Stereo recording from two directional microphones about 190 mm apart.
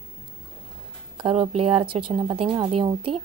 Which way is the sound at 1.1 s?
30° right (ahead or behind).